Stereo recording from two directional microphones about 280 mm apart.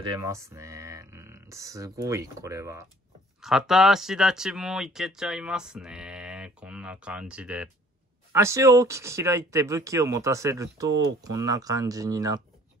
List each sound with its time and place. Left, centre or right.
0.0 s speech: centre